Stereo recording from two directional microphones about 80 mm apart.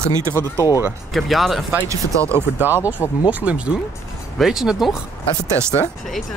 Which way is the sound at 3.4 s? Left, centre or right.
Centre.